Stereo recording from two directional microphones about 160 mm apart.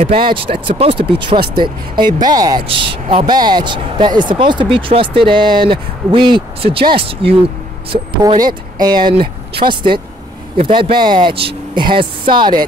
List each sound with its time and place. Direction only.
0.0 s speech: 35° right (ahead or behind)